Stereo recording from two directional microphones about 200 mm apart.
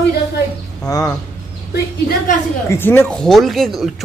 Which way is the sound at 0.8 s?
20° left (ahead or behind).